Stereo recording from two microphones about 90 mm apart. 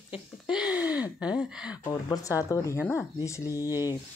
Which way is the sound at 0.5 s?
10° right (ahead or behind).